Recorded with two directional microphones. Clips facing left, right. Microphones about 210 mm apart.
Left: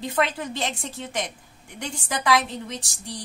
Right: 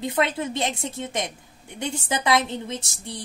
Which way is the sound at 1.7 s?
25° right (ahead or behind).